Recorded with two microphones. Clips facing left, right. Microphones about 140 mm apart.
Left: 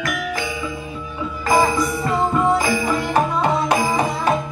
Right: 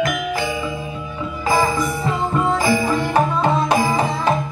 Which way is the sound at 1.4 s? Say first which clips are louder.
Left 1 dB; 15° left (ahead or behind).